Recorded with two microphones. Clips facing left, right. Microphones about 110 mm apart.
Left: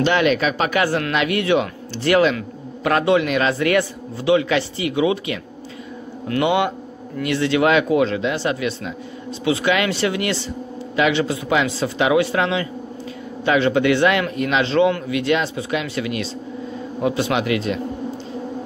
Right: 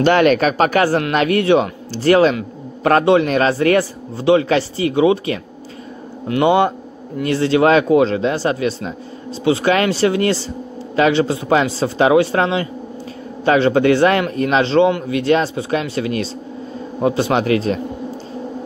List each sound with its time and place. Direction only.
0.0 s a man's voice: 45° right (ahead or behind)
6.4 s a man's voice: 35° right (ahead or behind)